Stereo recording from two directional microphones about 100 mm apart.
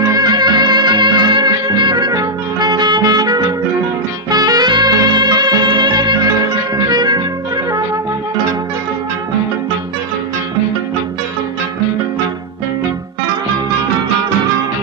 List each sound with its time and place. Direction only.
0.1 s music: 45° right (ahead or behind)